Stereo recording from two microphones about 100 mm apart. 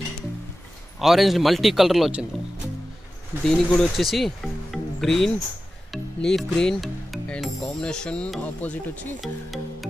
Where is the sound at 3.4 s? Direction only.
5° left (ahead or behind).